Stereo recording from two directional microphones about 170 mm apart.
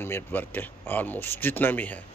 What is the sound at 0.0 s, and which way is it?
Speech, 10° left (ahead or behind).